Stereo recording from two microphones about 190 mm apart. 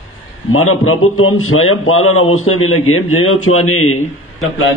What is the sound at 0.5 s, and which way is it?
A man's voice, 90° left.